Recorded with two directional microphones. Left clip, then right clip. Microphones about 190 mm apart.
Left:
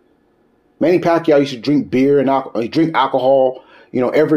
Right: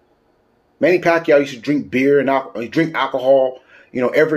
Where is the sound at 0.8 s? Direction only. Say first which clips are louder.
Even; 30° left (ahead or behind).